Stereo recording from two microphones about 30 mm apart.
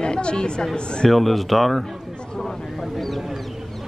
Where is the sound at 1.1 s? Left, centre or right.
Centre.